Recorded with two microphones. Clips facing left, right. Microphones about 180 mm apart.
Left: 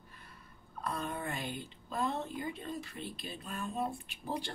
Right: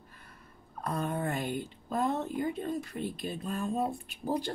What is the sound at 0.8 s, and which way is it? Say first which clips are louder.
A woman's voice: right 5 dB; 45° right (ahead or behind).